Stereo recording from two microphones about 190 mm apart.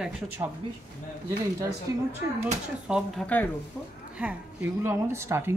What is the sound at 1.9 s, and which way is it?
Speech, 20° right (ahead or behind).